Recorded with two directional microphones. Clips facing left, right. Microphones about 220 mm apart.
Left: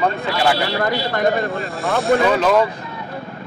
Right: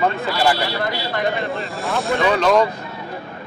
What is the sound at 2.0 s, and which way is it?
Speech, centre (ahead or behind).